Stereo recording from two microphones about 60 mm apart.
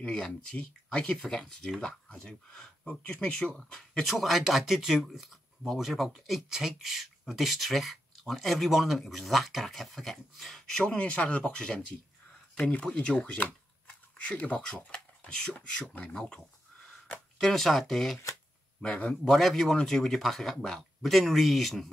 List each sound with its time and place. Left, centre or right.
0.1 s speech: centre
1.2 s speech: centre
2.9 s speech: left
4.0 s speech: centre
11.0 s speech: left
16.2 s speech: centre
18.8 s speech: centre
19.3 s speech: centre